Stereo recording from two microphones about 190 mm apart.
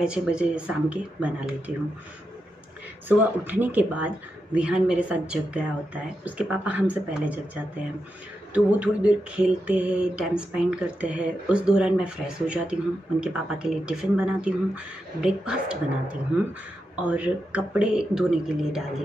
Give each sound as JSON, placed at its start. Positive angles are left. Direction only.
{"t": 0.0, "sound": "mantra", "side_deg": -5}
{"t": 3.1, "sound": "speech", "side_deg": -10}
{"t": 8.5, "sound": "mantra", "side_deg": -5}